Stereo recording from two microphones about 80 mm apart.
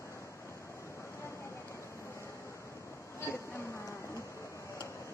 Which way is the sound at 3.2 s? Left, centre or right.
Left.